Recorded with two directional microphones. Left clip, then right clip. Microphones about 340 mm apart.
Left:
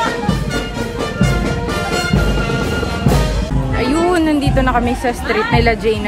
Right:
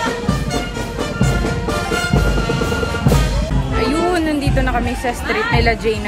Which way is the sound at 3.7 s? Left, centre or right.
Centre.